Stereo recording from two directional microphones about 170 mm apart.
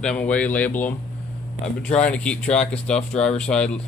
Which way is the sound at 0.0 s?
5° left (ahead or behind).